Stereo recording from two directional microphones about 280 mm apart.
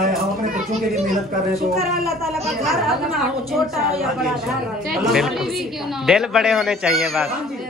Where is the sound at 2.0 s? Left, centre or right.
Centre.